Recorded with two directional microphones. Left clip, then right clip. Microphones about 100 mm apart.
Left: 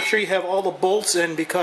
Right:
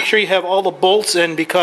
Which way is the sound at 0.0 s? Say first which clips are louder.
Right 6 dB; 5° right (ahead or behind).